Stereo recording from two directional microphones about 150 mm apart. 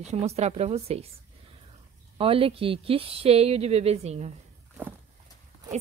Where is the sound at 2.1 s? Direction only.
40° right (ahead or behind).